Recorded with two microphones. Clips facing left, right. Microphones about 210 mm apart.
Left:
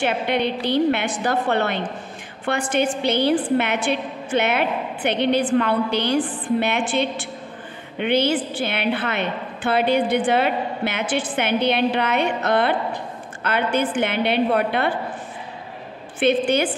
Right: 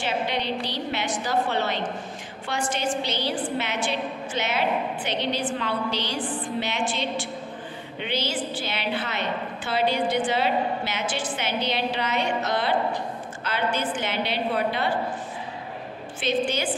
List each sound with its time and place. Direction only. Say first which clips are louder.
0.0 s a woman's voice: left 6 dB; 55° left (ahead or behind)
16.2 s a woman's voice: left 7 dB; 60° left (ahead or behind)